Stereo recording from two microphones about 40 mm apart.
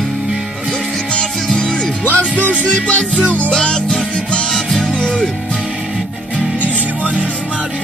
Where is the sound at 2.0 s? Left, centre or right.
Left; by 4.4 s centre.